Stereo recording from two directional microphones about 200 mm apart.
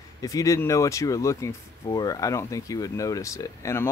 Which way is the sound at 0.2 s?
15° left (ahead or behind).